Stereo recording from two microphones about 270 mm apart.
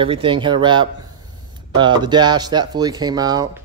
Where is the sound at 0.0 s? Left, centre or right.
Centre.